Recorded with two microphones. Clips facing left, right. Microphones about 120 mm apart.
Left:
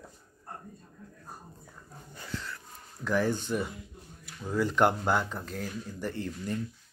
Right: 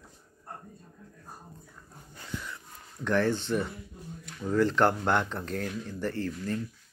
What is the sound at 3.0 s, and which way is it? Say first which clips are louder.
Speech: right 2 dB; 10° left (ahead or behind).